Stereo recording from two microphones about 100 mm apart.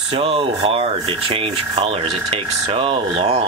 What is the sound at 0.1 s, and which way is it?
Speech, 90° right.